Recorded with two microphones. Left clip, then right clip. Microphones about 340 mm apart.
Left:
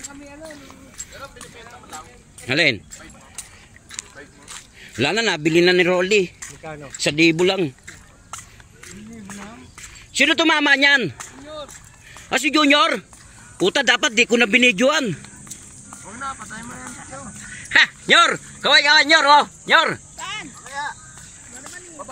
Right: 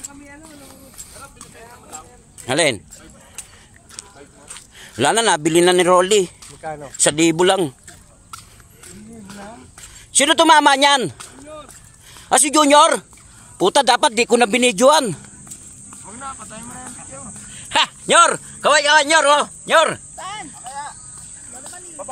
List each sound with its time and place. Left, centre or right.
2.4 s speech: centre
4.7 s speech: centre
10.1 s speech: centre
12.3 s speech: centre
16.1 s a sound: centre
20.2 s cricket: right